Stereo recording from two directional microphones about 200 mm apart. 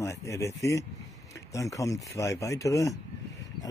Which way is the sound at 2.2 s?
15° left (ahead or behind).